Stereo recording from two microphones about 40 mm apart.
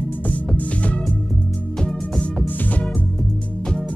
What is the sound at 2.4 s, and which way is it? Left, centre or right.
Music, left.